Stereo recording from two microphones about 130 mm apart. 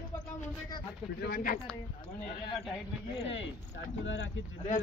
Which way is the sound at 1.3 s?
90° left.